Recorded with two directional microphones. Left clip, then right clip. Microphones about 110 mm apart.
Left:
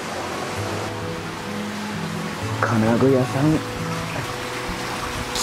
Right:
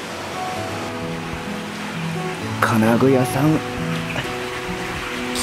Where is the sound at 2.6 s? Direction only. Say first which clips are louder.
Right 3 dB; 20° right (ahead or behind).